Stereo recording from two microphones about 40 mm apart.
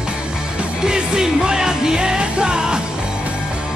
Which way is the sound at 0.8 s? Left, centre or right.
Centre.